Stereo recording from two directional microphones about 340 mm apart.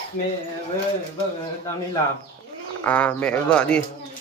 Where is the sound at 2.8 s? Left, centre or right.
Centre.